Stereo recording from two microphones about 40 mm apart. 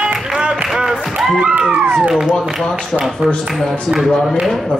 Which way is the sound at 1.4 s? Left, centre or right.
Right.